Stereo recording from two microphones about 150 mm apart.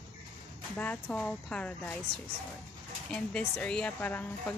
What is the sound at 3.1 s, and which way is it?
Speech, 5° left (ahead or behind).